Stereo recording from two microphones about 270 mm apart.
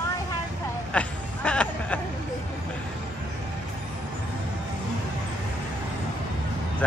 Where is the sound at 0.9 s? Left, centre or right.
Centre.